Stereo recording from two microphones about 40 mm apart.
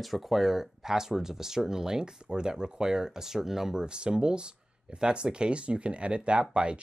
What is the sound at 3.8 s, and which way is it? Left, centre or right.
Speech, right.